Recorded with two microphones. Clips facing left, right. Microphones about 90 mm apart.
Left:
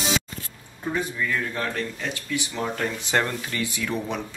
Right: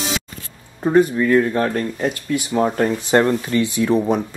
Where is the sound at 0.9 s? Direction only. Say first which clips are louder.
Right 12 dB; 45° right (ahead or behind).